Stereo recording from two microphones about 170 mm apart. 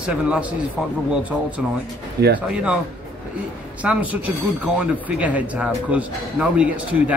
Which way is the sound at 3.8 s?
10° right (ahead or behind).